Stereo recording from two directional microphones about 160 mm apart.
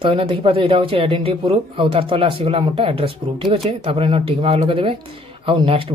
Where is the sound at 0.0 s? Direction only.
35° right (ahead or behind).